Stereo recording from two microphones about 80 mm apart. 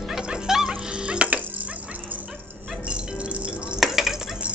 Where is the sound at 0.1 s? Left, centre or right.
Centre.